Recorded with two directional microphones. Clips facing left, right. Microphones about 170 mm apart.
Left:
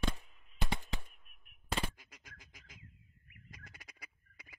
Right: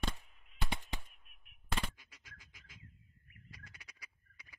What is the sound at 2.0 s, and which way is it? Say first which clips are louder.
Frog: left 3 dB; 45° left (ahead or behind).